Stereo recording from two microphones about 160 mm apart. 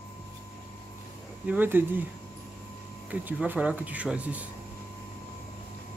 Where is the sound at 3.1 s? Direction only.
10° right (ahead or behind).